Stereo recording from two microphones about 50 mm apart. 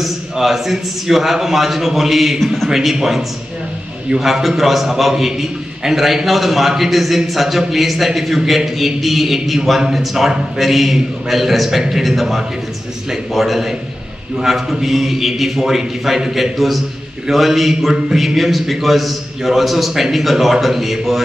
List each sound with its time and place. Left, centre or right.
0.0 s a man's voice: centre